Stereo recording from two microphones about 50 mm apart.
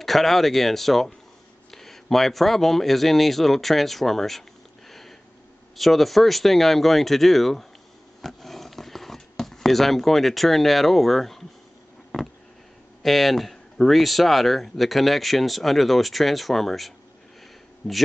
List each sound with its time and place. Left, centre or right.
0.0 s speech: centre
8.2 s a sound: centre
13.0 s speech: centre